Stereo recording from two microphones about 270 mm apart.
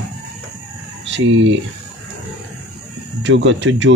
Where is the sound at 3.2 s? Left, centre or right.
Right.